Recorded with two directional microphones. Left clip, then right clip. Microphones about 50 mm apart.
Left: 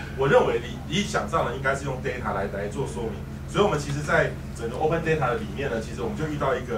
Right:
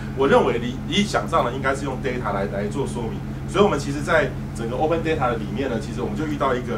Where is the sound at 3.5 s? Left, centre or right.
Right.